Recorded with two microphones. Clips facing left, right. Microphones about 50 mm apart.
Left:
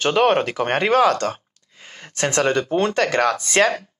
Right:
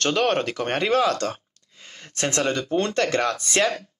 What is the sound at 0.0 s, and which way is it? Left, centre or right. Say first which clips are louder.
Speech: left 5 dB; centre.